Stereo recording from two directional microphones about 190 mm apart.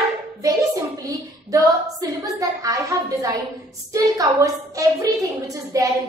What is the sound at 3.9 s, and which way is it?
A woman's voice, 15° right (ahead or behind).